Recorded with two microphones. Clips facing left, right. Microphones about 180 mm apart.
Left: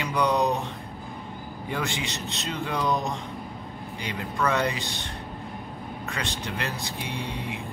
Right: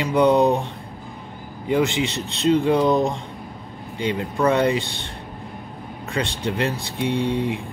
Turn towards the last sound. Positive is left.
turn(degrees=-30)  # may be behind; listen again after turning